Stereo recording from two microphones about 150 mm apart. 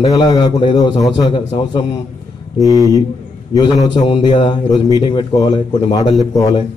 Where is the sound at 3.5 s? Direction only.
25° left (ahead or behind).